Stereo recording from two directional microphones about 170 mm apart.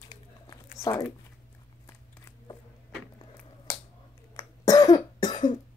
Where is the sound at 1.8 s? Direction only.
15° left (ahead or behind).